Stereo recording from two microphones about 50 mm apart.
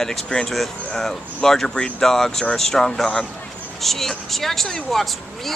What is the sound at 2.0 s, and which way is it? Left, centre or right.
Speech, centre.